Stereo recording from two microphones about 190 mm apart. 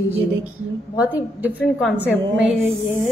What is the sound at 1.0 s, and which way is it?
A woman's voice, 10° right (ahead or behind).